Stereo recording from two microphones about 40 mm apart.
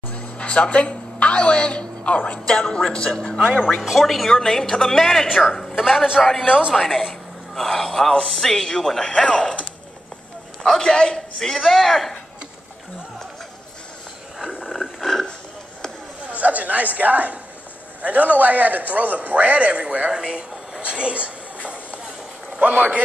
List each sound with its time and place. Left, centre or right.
0.1 s a sound: left
2.4 s a man's voice: centre
3.8 s a man's voice: centre
4.3 s a woman's voice: centre
5.8 s a man's voice: centre
6.4 s a woman's voice: right
6.7 s a man's voice: centre
9.1 s a man's voice: left
10.6 s a man's voice: centre
11.5 s a man's voice: centre
15.0 s wild animals: centre
16.3 s a man's voice: right
20.1 s speech: right
22.6 s a man's voice: right